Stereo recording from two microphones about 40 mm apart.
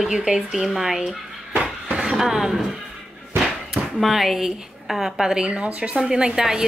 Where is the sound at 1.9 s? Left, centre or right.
Centre.